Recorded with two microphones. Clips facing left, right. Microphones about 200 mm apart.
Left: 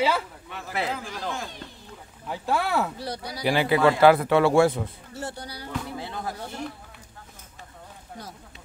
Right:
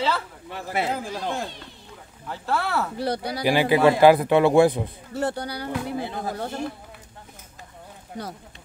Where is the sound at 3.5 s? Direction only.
15° right (ahead or behind).